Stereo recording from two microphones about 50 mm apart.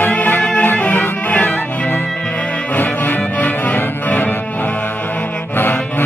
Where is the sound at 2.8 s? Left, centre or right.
Left.